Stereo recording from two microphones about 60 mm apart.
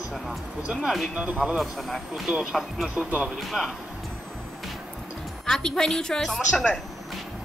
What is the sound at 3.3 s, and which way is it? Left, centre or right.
Speech, centre.